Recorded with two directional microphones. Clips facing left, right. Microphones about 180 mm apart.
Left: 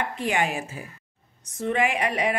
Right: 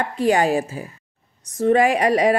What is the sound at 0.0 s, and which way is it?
Speech, 35° right (ahead or behind).